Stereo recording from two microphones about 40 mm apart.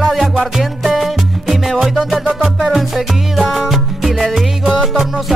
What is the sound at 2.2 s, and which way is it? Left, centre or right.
Music, centre.